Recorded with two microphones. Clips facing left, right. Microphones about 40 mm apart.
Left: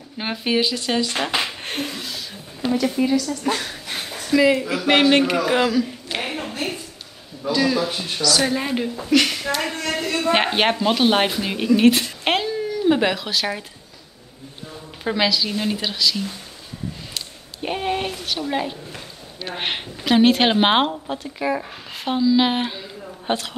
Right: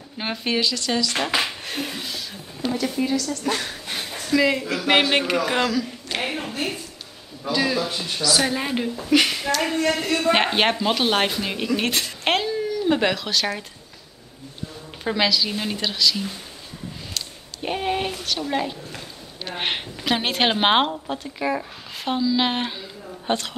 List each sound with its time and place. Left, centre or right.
0.2 s speech: centre; by 1.1 s left
1.1 s speech: centre
1.6 s a sound: left
2.0 s a sound: centre
2.6 s speech: centre
7.8 s speech: centre
8.4 s speech: centre
15.0 s speech: centre